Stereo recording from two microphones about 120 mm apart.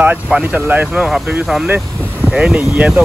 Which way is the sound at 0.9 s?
5° right (ahead or behind).